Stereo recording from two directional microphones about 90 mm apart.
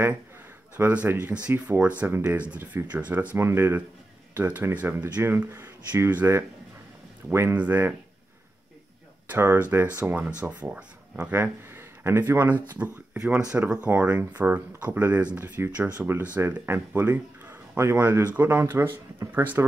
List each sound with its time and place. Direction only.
0.7 s speech: 20° right (ahead or behind)
9.3 s speech: 20° right (ahead or behind)